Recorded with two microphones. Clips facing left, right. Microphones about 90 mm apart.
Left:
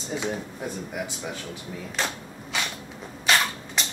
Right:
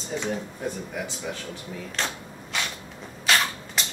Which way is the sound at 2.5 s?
Centre (ahead or behind).